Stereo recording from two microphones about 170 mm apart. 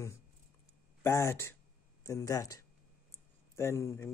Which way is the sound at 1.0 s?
15° left (ahead or behind).